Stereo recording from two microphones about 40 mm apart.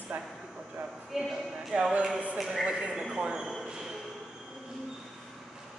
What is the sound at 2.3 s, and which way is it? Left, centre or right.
Speech, centre.